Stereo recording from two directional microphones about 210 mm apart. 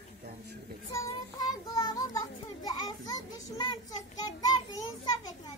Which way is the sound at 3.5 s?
20° left (ahead or behind).